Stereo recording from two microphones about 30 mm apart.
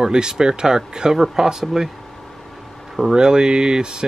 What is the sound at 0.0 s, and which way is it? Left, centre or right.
Speech, right.